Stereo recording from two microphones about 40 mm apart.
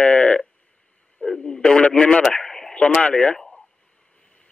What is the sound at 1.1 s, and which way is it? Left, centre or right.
Speech, centre.